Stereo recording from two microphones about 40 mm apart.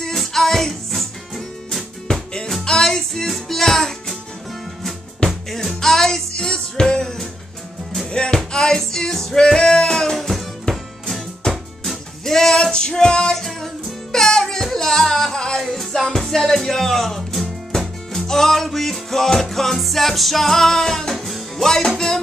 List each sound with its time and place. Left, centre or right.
0.0 s music: centre
2.1 s music: left
5.5 s music: centre
6.3 s music: left
10.1 s music: centre
11.4 s music: centre
12.3 s a sound: centre
12.7 s music: centre
13.4 s music: centre
15.6 s music: centre